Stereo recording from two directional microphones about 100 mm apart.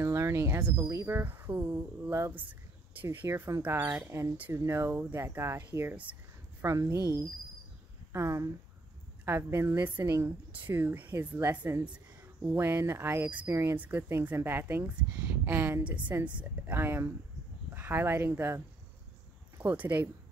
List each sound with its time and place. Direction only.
0.0 s speech: 25° right (ahead or behind)
2.9 s speech: 20° right (ahead or behind)
3.6 s speech: 20° right (ahead or behind)
4.1 s speech: 30° right (ahead or behind)
6.6 s speech: 30° right (ahead or behind)
12.4 s speech: 20° right (ahead or behind)
19.6 s speech: 15° right (ahead or behind)